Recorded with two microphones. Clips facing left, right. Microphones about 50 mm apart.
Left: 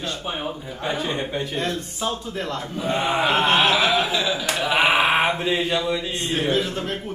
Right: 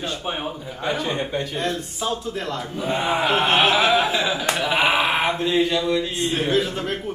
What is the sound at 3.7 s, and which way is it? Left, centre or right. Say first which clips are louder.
Speech: right 2 dB; right.